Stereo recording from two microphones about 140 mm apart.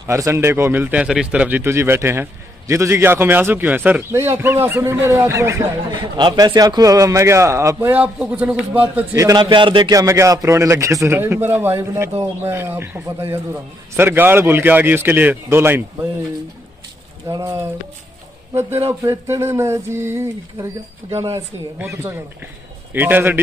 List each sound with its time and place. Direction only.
0.0 s a man's voice: 20° right (ahead or behind)
5.9 s a man's voice: 35° right (ahead or behind); by 8.6 s 10° right (ahead or behind)
9.1 s a man's voice: 25° right (ahead or behind)
17.3 s a man's voice: 25° right (ahead or behind)